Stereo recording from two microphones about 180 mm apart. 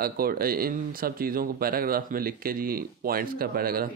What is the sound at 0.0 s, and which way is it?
Speech, 55° right (ahead or behind).